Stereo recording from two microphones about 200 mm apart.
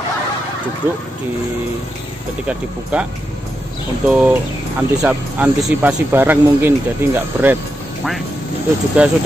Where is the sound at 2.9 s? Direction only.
5° right (ahead or behind).